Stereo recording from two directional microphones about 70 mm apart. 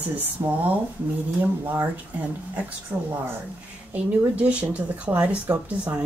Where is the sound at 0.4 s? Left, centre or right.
Right.